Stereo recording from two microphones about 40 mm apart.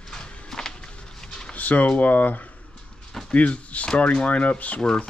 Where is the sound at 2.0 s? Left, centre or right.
Left.